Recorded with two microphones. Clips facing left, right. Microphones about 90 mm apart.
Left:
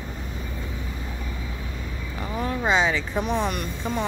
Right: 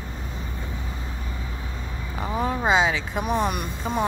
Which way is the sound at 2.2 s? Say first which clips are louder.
Right 2 dB; 20° right (ahead or behind).